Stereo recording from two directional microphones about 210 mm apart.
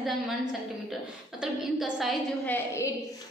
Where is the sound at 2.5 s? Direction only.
10° left (ahead or behind).